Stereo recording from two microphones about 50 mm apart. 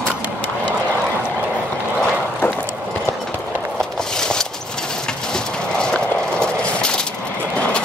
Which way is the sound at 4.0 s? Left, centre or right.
Centre.